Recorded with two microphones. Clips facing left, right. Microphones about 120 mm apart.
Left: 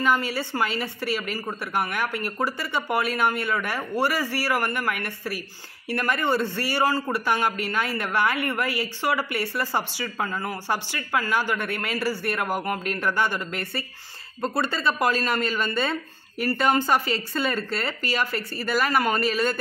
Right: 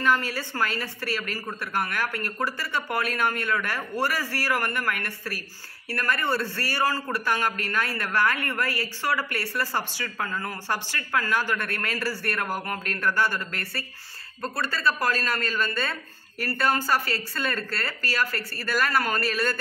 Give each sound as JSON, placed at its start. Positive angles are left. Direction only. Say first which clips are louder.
{"t": 0.0, "sound": "a man's voice", "louder": "left 1 dB", "side_deg": 15}